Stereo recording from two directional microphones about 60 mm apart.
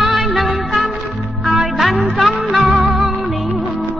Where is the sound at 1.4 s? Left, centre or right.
Centre.